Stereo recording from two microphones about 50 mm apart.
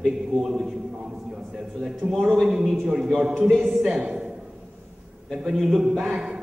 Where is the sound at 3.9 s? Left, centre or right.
Centre.